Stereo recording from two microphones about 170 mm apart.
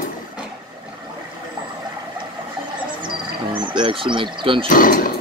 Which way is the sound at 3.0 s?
30° right (ahead or behind).